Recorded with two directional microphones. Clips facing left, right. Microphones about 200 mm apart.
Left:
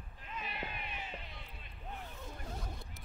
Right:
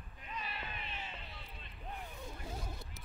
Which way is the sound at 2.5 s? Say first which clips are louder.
Even; centre (ahead or behind).